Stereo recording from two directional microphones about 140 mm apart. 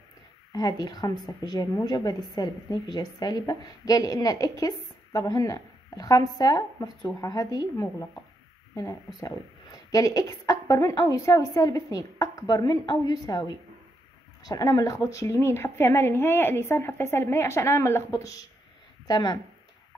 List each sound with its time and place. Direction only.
0.5 s a woman's voice: 30° left (ahead or behind)
14.4 s a woman's voice: 25° left (ahead or behind)